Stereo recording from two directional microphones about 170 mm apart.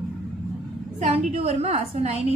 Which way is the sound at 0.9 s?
45° right (ahead or behind).